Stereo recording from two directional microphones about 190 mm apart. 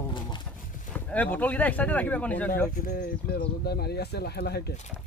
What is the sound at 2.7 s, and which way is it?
Speech, 50° left (ahead or behind).